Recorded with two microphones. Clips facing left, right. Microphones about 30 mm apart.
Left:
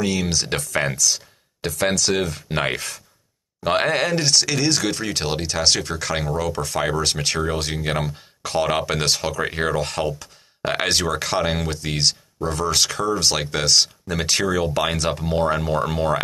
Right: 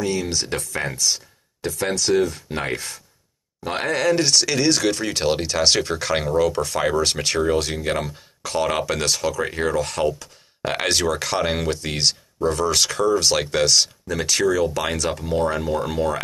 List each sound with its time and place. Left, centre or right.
0.0 s speech: left
0.3 s speech: left
2.2 s speech: left
4.1 s speech: centre; by 9.9 s left
9.9 s speech: centre
14.0 s speech: left